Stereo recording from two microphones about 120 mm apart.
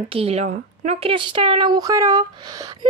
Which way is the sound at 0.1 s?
55° right (ahead or behind).